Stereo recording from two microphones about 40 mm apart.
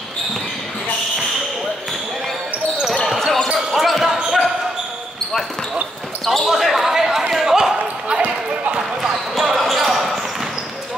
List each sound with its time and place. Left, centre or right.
3.1 s basketball bounce: centre
6.2 s basketball bounce: centre
9.4 s basketball bounce: centre